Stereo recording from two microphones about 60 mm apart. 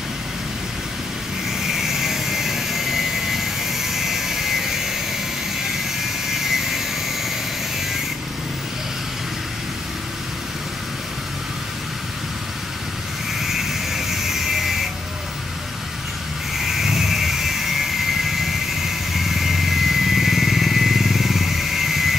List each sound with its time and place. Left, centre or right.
1.6 s vehicle: centre
6.3 s vehicle: centre
13.4 s vehicle: centre
16.5 s vehicle: centre